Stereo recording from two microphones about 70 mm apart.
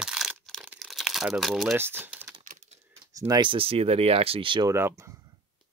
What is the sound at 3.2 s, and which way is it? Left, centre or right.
Speech, right.